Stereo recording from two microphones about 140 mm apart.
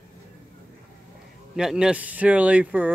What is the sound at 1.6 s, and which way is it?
Speech, 5° right (ahead or behind).